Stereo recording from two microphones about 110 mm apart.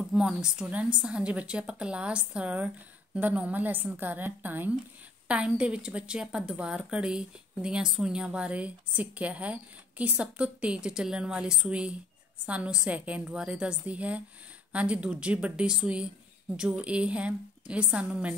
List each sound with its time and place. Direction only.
0.0 s a woman's voice: 5° right (ahead or behind)